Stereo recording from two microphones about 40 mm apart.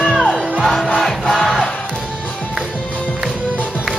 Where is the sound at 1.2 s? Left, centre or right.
Centre.